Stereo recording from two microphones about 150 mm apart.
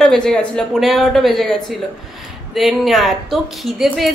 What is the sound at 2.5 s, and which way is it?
A woman's voice, centre (ahead or behind).